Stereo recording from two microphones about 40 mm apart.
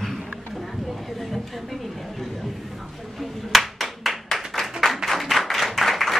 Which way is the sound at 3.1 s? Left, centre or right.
Centre.